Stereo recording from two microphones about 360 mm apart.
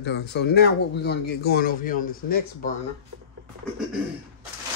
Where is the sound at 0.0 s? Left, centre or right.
Left.